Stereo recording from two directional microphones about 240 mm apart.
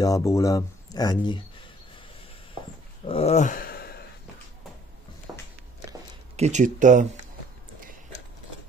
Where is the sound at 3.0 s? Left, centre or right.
Left.